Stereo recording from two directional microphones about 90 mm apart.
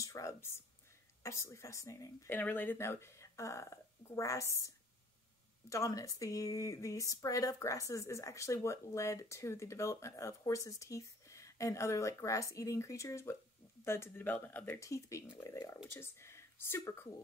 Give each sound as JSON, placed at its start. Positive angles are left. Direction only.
{"t": 0.0, "sound": "speech", "side_deg": 35}
{"t": 2.3, "sound": "speech", "side_deg": 20}
{"t": 14.8, "sound": "speech", "side_deg": 35}